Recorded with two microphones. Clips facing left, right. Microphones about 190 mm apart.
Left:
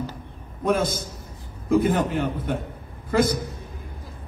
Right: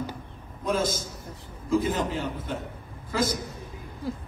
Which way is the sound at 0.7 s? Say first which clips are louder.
Left 4 dB; 60° left (ahead or behind).